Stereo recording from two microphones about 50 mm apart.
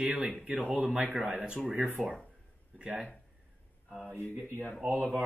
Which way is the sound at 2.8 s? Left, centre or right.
Right.